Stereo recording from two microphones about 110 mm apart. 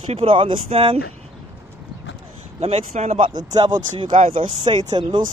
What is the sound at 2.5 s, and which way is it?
Speech, 65° right (ahead or behind).